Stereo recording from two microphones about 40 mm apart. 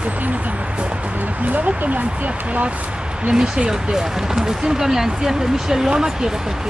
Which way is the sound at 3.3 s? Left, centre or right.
Right.